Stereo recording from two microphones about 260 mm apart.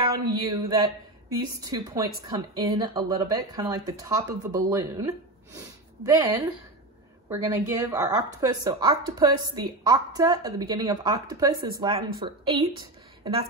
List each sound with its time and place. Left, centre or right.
0.1 s speech: centre